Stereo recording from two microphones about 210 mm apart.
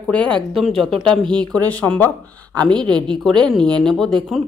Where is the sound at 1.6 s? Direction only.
5° left (ahead or behind).